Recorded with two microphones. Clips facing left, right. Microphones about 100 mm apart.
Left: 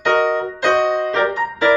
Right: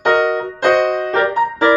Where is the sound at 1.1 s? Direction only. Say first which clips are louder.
Right 3 dB; 45° right (ahead or behind).